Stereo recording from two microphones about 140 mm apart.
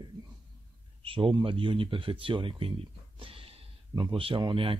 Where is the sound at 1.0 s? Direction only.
40° right (ahead or behind).